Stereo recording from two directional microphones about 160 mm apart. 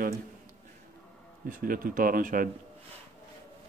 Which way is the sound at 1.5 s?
60° right (ahead or behind).